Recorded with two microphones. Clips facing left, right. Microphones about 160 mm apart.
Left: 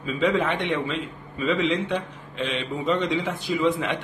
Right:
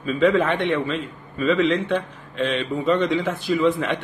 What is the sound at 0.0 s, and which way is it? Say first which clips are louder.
A man's voice: right 4 dB; 15° left (ahead or behind).